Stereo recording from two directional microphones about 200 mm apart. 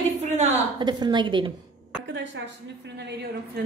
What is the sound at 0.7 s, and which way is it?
Speech, 20° right (ahead or behind).